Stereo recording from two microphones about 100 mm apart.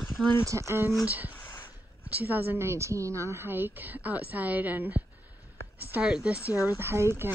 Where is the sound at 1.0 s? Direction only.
15° right (ahead or behind).